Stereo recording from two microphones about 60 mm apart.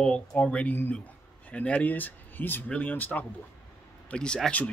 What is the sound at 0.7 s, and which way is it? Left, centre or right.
Speech, left.